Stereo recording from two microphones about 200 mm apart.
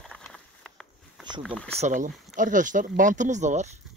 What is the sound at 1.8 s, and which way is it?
Speech, 40° right (ahead or behind).